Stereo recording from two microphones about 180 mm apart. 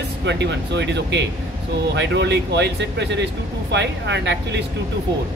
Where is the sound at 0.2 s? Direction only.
75° right (ahead or behind).